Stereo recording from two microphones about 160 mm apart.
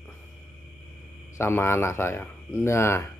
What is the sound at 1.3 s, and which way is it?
Speech, 15° left (ahead or behind).